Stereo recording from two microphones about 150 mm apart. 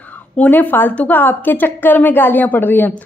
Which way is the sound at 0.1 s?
10° left (ahead or behind).